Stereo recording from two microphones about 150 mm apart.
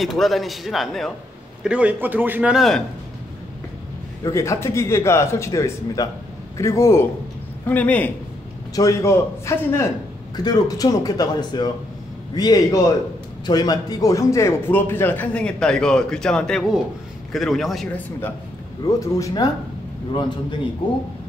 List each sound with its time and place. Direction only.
0.0 s a man's voice: centre (ahead or behind)
4.2 s a man's voice: 20° left (ahead or behind)
8.7 s a man's voice: 20° left (ahead or behind); by 18.0 s centre (ahead or behind)
18.9 s a man's voice: 20° left (ahead or behind)